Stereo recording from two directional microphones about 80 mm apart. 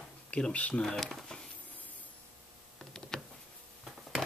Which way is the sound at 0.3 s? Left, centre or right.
Centre.